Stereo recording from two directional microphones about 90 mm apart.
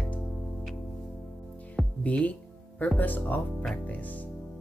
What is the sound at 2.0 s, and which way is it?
Speech, 15° left (ahead or behind).